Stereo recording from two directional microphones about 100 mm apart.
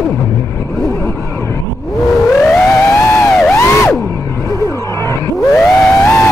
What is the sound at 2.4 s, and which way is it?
Emergency vehicle, 10° left (ahead or behind).